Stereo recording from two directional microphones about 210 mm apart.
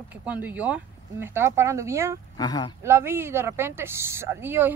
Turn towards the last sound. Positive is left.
turn(degrees=-10)  # may be behind; listen again after turning